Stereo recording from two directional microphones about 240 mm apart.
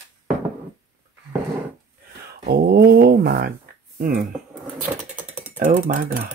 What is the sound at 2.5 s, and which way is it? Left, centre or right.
Speech, right.